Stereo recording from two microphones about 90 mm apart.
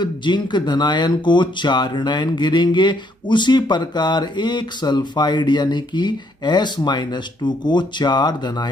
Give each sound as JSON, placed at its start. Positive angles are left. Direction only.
{"t": 0.0, "sound": "speech", "side_deg": 55}